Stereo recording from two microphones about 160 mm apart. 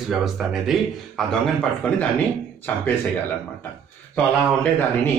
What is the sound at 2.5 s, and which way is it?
Speech, 10° left (ahead or behind).